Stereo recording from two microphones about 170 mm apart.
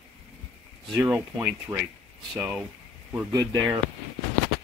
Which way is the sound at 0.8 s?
5° right (ahead or behind).